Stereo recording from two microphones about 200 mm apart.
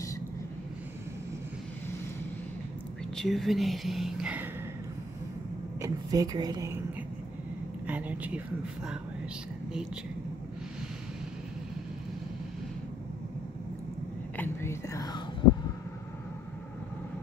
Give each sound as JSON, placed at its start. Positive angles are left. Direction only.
{"t": 3.2, "sound": "speech", "side_deg": 0}
{"t": 5.8, "sound": "speech", "side_deg": -20}
{"t": 7.8, "sound": "speech", "side_deg": -5}
{"t": 14.3, "sound": "whispering", "side_deg": 10}